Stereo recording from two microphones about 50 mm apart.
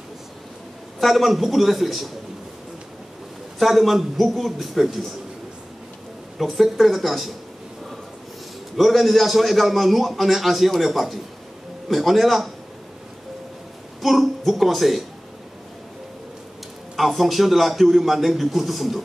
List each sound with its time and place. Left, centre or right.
0.9 s a man's voice: centre
3.5 s a man's voice: centre
6.3 s a man's voice: centre
8.7 s a man's voice: centre
14.0 s a woman's voice: centre
16.9 s a man's voice: centre